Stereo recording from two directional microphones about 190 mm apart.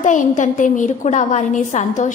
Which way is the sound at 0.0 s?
40° left (ahead or behind).